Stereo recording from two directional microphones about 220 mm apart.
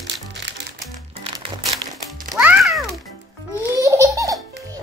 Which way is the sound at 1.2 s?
25° right (ahead or behind).